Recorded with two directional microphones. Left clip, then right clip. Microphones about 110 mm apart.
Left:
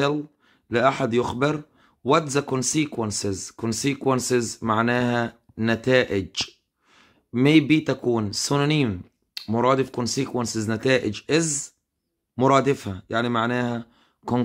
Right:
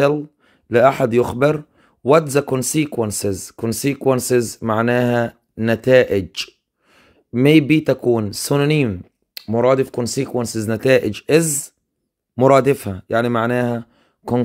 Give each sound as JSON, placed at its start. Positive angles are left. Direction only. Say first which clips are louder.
{"t": 0.0, "sound": "speech", "louder": "right 7 dB", "side_deg": -70}
{"t": 12.4, "sound": "speech", "louder": "right 6 dB", "side_deg": -65}